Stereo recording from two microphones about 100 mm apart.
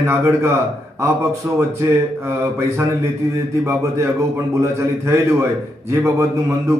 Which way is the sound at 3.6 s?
30° right (ahead or behind).